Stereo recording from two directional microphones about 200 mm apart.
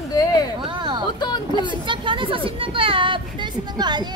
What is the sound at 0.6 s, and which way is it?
A woman's voice, 25° right (ahead or behind).